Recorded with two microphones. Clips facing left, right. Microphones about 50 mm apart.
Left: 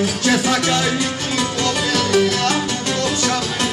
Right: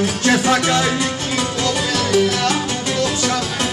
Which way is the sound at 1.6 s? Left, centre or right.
Centre.